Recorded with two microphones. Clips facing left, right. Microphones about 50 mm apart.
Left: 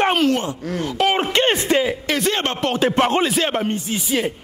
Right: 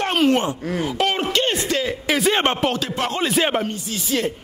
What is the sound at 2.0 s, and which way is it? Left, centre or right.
Speech, centre.